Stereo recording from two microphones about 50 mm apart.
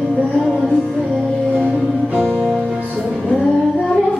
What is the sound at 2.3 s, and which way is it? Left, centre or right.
Music, centre.